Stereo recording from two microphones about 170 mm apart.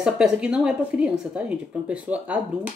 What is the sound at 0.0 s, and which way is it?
Speech, 5° right (ahead or behind).